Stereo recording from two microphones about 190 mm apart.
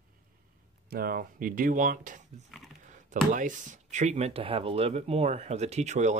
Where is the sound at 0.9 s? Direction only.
50° right (ahead or behind).